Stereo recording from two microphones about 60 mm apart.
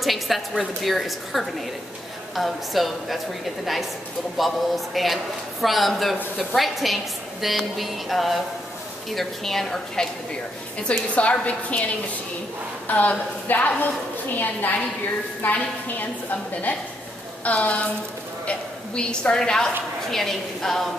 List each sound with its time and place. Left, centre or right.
0.0 s a sound: centre
0.8 s speech: centre
4.4 s speech: centre
10.8 s a woman's voice: centre